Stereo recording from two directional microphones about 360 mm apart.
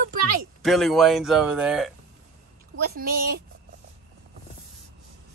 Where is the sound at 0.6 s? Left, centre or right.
Centre.